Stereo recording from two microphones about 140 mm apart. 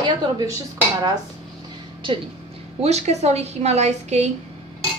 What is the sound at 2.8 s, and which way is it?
A woman's voice, 50° right (ahead or behind).